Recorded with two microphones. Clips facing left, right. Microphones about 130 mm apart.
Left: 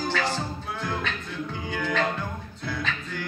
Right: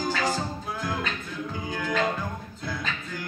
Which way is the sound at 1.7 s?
5° right (ahead or behind).